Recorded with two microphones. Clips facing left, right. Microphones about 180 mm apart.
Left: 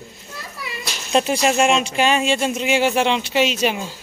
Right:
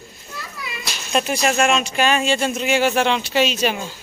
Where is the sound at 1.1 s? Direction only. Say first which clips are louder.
Left 2 dB; 25° left (ahead or behind).